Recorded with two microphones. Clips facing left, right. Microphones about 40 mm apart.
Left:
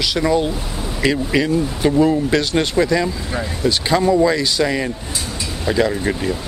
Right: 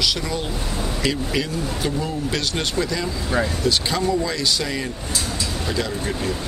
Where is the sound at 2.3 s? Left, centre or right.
Left.